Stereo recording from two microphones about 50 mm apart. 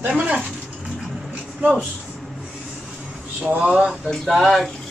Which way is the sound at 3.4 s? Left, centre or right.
Right.